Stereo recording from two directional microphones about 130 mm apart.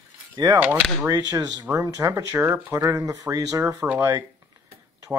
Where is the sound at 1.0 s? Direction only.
30° right (ahead or behind).